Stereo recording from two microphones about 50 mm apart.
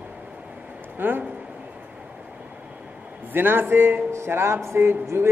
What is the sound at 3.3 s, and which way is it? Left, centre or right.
Speech, right.